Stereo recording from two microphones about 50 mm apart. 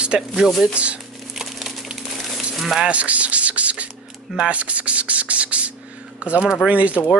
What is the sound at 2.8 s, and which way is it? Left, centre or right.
Speech, right.